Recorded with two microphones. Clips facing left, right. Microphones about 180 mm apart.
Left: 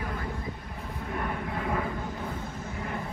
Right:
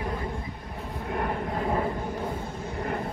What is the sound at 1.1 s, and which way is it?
Vehicle, 45° right (ahead or behind).